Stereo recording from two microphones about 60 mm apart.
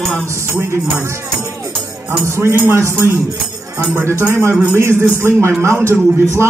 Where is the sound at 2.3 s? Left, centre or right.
Right.